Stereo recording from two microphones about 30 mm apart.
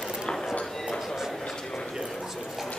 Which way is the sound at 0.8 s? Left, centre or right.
Centre.